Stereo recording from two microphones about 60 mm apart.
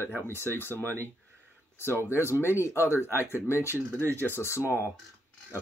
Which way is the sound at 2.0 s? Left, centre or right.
Left.